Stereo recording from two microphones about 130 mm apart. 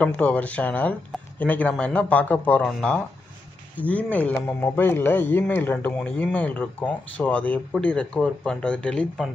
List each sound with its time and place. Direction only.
0.0 s speech: 10° left (ahead or behind)